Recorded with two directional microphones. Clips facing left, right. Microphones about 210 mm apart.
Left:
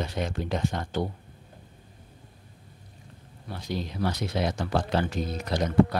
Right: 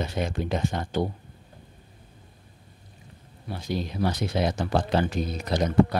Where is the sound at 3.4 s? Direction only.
10° right (ahead or behind).